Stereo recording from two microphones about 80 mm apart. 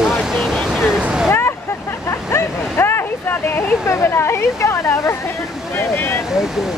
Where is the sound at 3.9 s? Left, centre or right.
Left.